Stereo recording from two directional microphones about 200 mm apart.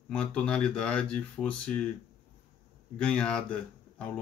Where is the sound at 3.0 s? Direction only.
5° left (ahead or behind).